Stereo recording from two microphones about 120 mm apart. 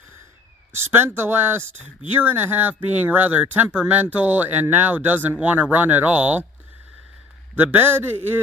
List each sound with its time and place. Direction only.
0.7 s speech: 20° right (ahead or behind)
7.5 s speech: 15° right (ahead or behind)